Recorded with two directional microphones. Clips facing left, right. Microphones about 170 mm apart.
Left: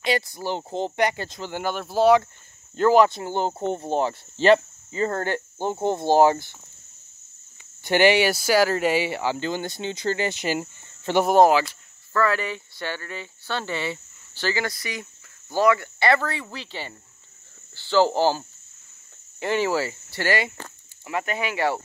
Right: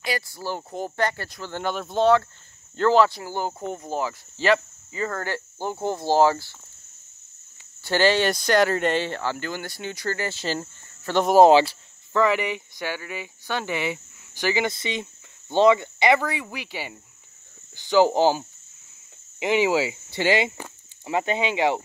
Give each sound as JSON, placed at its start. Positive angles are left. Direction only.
{"t": 0.0, "sound": "speech", "side_deg": 20}
{"t": 1.6, "sound": "speech", "side_deg": 5}
{"t": 7.8, "sound": "speech", "side_deg": 15}
{"t": 11.4, "sound": "speech", "side_deg": -25}
{"t": 19.4, "sound": "speech", "side_deg": -15}